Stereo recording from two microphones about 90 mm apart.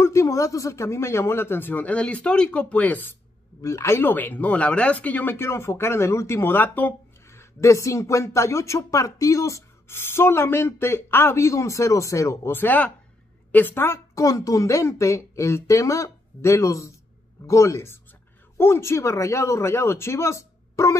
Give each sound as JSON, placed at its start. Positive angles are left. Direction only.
{"t": 0.0, "sound": "speech", "side_deg": 30}
{"t": 3.6, "sound": "speech", "side_deg": 30}
{"t": 12.5, "sound": "a woman's voice", "side_deg": 20}